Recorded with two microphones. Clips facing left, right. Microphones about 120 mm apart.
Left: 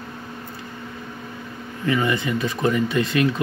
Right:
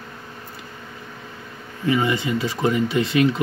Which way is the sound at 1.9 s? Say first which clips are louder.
Right 1 dB; 15° right (ahead or behind).